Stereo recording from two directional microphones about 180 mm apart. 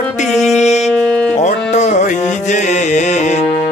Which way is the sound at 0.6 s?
40° left (ahead or behind).